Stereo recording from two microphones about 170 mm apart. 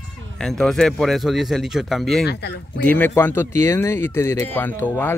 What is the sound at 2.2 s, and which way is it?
Speech, 75° left (ahead or behind).